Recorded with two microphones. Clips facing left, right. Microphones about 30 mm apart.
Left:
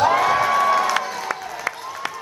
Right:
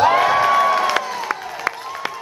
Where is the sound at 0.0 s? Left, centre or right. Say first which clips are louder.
Right 3 dB; right.